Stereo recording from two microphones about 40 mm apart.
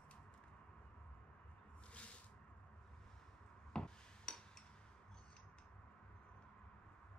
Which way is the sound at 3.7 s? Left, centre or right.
Centre.